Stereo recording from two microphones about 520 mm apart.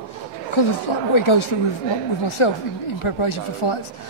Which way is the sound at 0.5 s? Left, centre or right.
Left.